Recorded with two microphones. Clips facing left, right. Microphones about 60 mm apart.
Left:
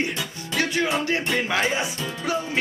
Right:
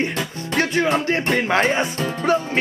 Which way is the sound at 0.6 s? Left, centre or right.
Right.